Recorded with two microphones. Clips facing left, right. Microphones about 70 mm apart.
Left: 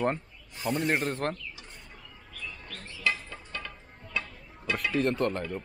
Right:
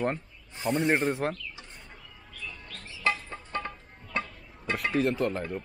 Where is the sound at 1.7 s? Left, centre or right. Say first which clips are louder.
Even; centre.